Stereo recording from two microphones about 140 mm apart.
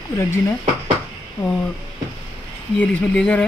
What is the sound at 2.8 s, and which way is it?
Speech, 10° left (ahead or behind).